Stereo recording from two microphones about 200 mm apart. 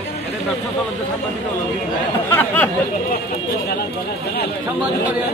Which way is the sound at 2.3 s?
10° left (ahead or behind).